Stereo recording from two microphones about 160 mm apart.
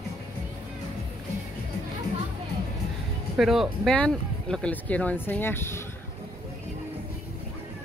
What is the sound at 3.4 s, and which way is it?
Speech, centre (ahead or behind).